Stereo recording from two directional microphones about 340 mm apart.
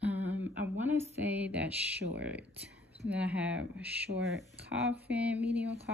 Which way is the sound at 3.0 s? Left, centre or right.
Centre.